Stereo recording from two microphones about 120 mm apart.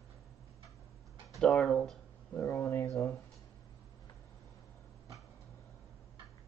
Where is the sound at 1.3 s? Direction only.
5° left (ahead or behind).